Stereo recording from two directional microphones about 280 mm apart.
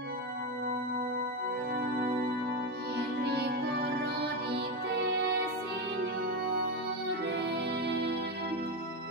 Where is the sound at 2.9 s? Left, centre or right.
Right.